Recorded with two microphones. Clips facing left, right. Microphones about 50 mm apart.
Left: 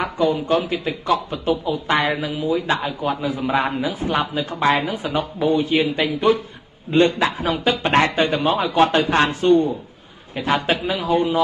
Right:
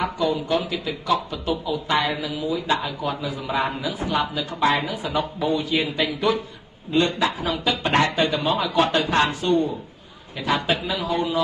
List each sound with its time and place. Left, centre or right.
0.0 s speech: left